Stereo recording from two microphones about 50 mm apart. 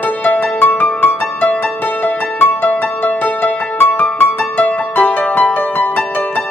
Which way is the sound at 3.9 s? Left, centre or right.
Left.